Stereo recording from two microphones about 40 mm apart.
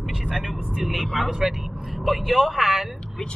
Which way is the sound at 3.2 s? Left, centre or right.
Centre.